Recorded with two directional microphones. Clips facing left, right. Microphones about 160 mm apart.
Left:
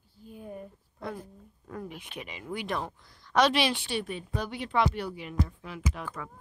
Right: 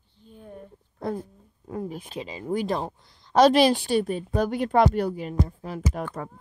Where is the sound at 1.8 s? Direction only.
35° right (ahead or behind).